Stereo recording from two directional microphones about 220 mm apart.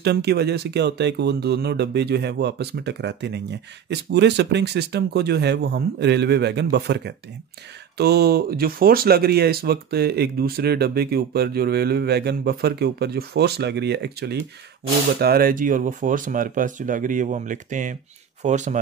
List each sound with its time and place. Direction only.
0.0 s speech: 50° right (ahead or behind); by 18.8 s 30° right (ahead or behind)